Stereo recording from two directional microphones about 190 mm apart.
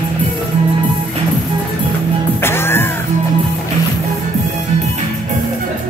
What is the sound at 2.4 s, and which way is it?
Music, 10° left (ahead or behind).